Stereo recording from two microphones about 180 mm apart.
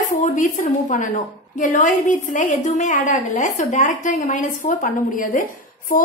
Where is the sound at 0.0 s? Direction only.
45° left (ahead or behind).